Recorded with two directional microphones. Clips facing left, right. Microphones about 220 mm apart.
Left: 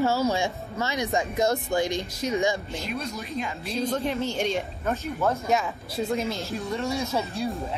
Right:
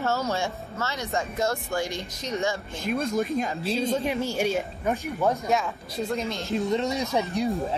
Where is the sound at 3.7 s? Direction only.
30° right (ahead or behind).